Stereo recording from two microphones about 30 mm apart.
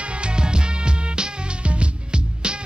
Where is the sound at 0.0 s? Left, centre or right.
Right.